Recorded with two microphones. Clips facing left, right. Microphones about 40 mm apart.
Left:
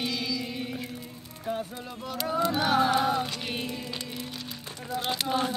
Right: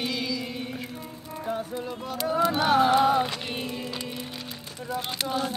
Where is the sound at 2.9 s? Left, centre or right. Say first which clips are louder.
Right 5 dB; centre.